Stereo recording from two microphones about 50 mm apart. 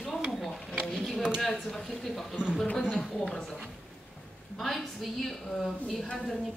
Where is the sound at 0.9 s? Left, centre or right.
Centre.